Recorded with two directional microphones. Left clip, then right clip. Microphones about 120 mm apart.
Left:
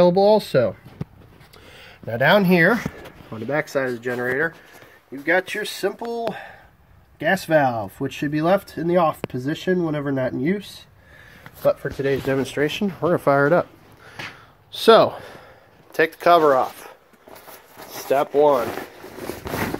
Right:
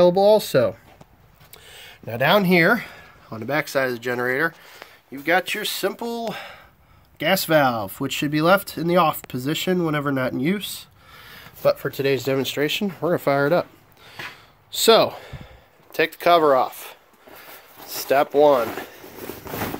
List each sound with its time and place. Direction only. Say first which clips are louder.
0.0 s speech: even; 30° right (ahead or behind)
1.7 s speech: left 3 dB; 5° right (ahead or behind)
3.3 s speech: even; 30° right (ahead or behind)
3.7 s speech: right 1 dB; 15° right (ahead or behind)
4.0 s speech: right 1 dB; 30° right (ahead or behind)
12.4 s speech: even; 10° right (ahead or behind)
13.3 s speech: left 3 dB; 5° right (ahead or behind)
14.7 s speech: left 2 dB; 5° right (ahead or behind); by 16.9 s 20° right (ahead or behind)
18.0 s speech: right 1 dB; 35° right (ahead or behind)
18.3 s speech: right 1 dB; 45° right (ahead or behind)